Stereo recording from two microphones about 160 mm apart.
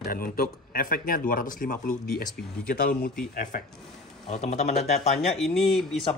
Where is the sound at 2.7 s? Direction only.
65° left (ahead or behind).